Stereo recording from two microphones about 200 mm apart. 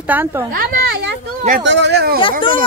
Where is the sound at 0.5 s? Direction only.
50° right (ahead or behind).